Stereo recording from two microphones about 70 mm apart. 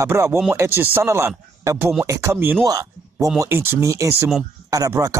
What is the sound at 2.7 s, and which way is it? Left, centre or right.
Speech, right.